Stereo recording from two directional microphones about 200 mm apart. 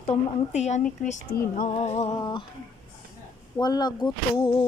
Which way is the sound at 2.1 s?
20° left (ahead or behind).